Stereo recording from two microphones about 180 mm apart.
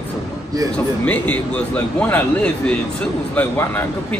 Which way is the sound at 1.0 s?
10° left (ahead or behind).